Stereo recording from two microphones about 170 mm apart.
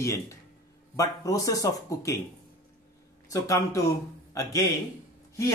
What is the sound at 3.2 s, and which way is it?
Speech, 20° left (ahead or behind).